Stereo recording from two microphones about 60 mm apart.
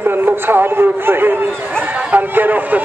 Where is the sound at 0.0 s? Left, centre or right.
Right.